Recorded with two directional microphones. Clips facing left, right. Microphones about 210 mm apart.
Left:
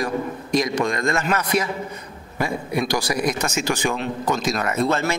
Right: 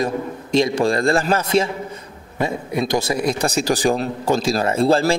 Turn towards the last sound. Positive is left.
turn(degrees=-30)  # may be behind; listen again after turning